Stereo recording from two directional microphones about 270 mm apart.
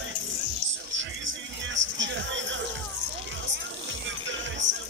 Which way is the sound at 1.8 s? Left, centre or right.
Right.